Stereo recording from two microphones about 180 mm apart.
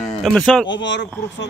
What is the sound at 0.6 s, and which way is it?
Speech, 90° left.